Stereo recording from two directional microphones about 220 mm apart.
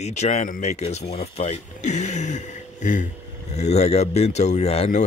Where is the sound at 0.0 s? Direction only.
30° left (ahead or behind).